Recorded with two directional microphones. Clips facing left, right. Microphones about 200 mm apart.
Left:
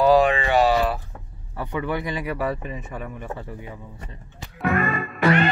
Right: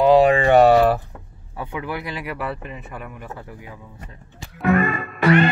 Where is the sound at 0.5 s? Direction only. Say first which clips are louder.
Right 6 dB; 55° right (ahead or behind).